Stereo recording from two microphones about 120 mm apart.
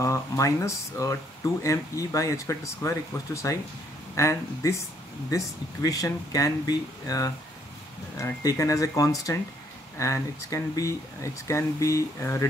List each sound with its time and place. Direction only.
0.0 s speech: 25° left (ahead or behind)